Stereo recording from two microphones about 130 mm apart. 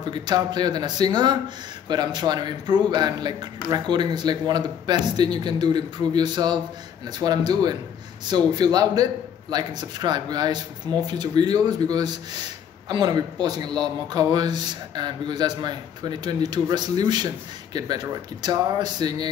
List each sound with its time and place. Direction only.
0.1 s speech: 35° right (ahead or behind)